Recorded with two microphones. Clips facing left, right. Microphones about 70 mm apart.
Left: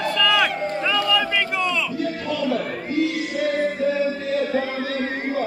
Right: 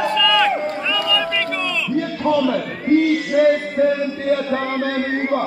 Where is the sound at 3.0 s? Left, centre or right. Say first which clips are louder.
Right 4 dB; right.